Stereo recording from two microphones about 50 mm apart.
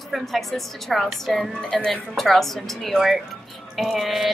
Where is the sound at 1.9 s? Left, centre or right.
Centre.